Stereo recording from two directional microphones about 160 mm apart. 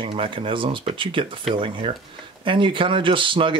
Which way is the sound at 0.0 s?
35° right (ahead or behind).